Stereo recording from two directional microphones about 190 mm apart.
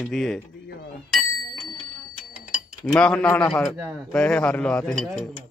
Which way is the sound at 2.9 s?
5° left (ahead or behind).